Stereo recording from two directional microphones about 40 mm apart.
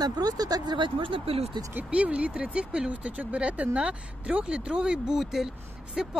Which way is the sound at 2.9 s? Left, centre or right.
Right.